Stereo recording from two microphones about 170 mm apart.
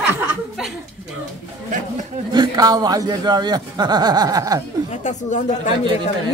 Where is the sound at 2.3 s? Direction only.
25° right (ahead or behind).